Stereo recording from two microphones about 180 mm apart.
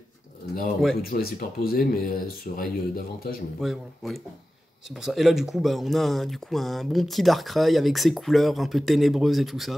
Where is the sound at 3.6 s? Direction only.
Centre (ahead or behind).